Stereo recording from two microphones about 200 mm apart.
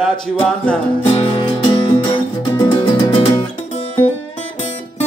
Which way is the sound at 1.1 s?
25° left (ahead or behind).